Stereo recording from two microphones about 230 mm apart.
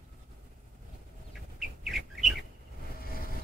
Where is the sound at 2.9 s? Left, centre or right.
Left.